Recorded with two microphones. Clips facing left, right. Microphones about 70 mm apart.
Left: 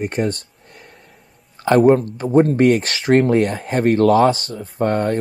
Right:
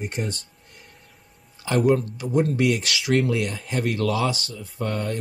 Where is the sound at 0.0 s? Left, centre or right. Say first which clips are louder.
Left 9 dB; left.